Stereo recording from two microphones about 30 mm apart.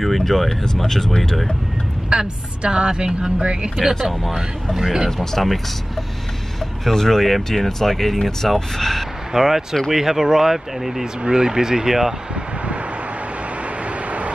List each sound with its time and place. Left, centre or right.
0.0 s speech: centre
0.8 s speech: centre
2.0 s a woman's voice: right
4.7 s speech: centre
5.4 s speech: centre
6.8 s speech: centre
9.3 s speech: centre
11.2 s speech: right
13.8 s vehicle: right